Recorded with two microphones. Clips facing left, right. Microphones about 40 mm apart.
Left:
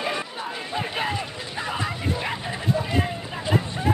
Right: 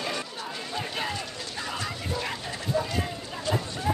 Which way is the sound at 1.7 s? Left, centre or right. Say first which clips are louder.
Left 6 dB; centre.